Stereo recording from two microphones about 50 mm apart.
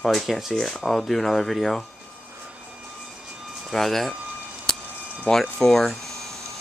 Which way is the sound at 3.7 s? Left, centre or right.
Centre.